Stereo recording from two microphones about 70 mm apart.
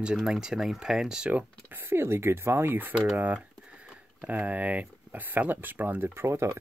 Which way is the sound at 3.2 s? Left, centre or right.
Centre.